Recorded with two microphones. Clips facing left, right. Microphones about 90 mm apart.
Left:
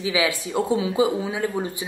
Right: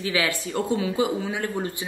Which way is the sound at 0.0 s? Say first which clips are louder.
Left 2 dB; 15° left (ahead or behind).